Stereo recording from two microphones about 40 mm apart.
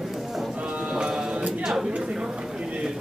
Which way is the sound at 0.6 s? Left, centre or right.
Right.